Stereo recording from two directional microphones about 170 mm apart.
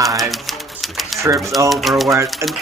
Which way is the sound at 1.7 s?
Centre (ahead or behind).